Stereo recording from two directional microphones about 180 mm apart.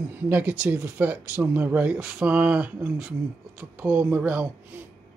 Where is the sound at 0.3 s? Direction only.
10° right (ahead or behind).